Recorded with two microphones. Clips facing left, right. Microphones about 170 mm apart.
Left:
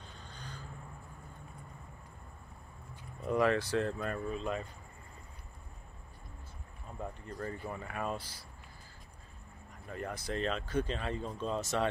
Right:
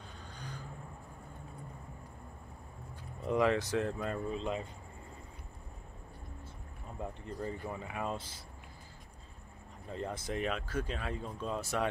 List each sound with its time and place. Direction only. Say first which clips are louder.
0.3 s vehicle: right 2 dB; 10° right (ahead or behind)
3.3 s speech: even; 20° right (ahead or behind)
7.3 s speech: right 1 dB; 15° right (ahead or behind)
9.8 s speech: right 1 dB; 25° right (ahead or behind)